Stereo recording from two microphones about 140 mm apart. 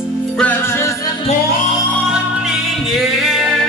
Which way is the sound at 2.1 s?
5° right (ahead or behind).